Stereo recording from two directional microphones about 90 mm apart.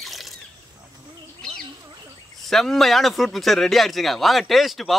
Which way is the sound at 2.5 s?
5° left (ahead or behind).